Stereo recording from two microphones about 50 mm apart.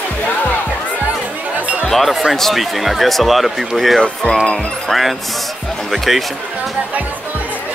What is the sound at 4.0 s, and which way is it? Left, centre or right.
Speech, centre.